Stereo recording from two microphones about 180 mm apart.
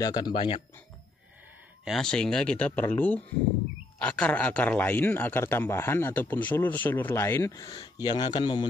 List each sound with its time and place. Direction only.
0.0 s speech: 25° left (ahead or behind)
1.9 s speech: 5° left (ahead or behind); by 8.6 s 25° left (ahead or behind)